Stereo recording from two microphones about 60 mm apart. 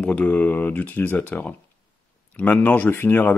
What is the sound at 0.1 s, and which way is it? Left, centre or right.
Speech, left.